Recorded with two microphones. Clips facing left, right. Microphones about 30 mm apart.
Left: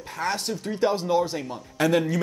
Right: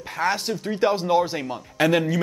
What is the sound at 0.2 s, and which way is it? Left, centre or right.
Speech, centre.